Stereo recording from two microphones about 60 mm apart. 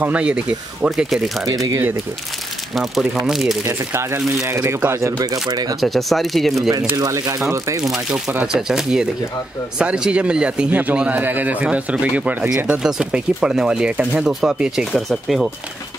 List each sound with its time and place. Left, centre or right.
0.0 s speech: right
0.9 s speech: centre
1.4 s speech: right
2.7 s speech: centre
3.6 s speech: right
5.2 s speech: right
5.8 s speech: centre
7.0 s speech: right
7.8 s speech: centre
10.7 s speech: right
12.6 s speech: centre
14.9 s speech: centre